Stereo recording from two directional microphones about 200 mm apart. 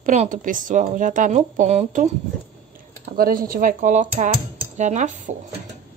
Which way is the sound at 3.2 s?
45° right (ahead or behind).